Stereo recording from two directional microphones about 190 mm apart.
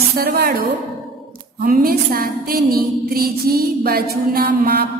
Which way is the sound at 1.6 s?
50° right (ahead or behind).